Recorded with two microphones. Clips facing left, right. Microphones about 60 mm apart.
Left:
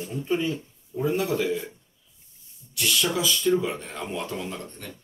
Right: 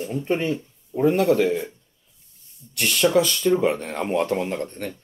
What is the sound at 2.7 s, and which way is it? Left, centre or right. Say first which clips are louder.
Speech: right 7 dB; right.